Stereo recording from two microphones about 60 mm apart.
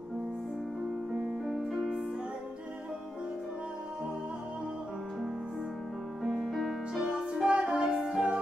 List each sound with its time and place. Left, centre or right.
1.2 s music: centre
6.2 s music: centre